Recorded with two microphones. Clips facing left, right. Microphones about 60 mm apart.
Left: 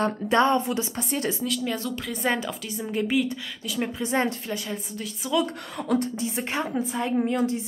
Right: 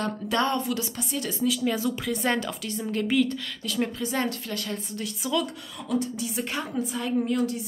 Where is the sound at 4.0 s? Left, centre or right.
Left.